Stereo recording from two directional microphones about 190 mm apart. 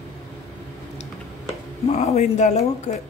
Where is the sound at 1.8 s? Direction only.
35° left (ahead or behind).